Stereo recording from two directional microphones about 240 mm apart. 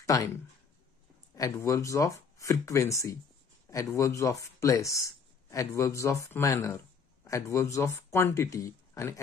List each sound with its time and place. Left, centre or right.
0.0 s speech: centre
1.3 s speech: centre